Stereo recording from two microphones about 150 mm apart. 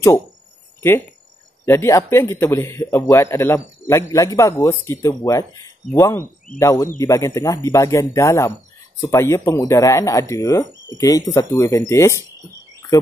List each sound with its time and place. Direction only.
1.7 s speech: 20° left (ahead or behind)